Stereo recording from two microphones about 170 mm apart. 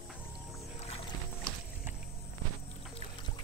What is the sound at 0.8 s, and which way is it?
Music, 35° left (ahead or behind).